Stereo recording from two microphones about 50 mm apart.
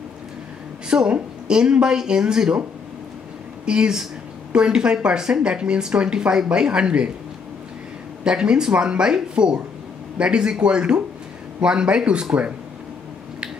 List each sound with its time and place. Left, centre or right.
0.8 s speech: centre
3.6 s speech: centre
8.2 s speech: centre